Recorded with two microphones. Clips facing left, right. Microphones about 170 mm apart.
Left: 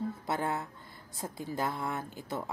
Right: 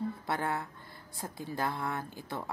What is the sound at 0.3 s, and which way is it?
A woman's voice, 20° left (ahead or behind).